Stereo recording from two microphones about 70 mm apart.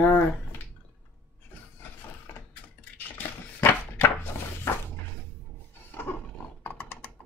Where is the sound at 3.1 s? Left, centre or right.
Left.